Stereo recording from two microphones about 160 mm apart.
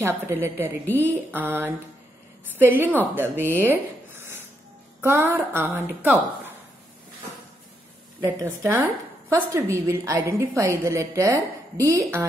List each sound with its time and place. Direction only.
0.0 s a woman's voice: 15° right (ahead or behind)
2.9 s a woman's voice: 10° right (ahead or behind)
8.2 s a woman's voice: 15° right (ahead or behind)